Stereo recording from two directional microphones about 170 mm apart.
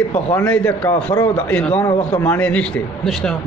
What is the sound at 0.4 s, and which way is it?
Speech, 5° left (ahead or behind).